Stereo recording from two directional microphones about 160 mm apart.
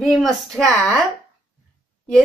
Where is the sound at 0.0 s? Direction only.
Centre (ahead or behind).